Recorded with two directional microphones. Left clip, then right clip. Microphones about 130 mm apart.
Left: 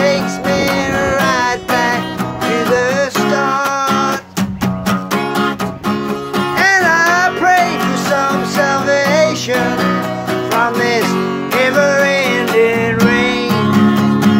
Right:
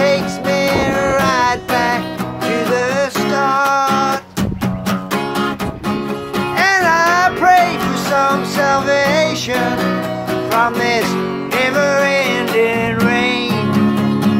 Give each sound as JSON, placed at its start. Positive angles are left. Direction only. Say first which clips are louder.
{"t": 0.0, "sound": "music", "louder": "left 1 dB", "side_deg": -15}
{"t": 2.4, "sound": "music", "louder": "left 2 dB", "side_deg": 40}
{"t": 2.7, "sound": "music", "louder": "left 3 dB", "side_deg": -10}
{"t": 4.4, "sound": "music", "louder": "left 2 dB", "side_deg": 40}
{"t": 6.6, "sound": "music", "louder": "left 1 dB", "side_deg": -15}
{"t": 10.6, "sound": "music", "louder": "left 1 dB", "side_deg": -15}
{"t": 13.7, "sound": "music", "louder": "left 3 dB", "side_deg": 35}